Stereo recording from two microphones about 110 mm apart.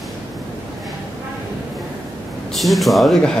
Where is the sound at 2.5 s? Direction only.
Centre (ahead or behind).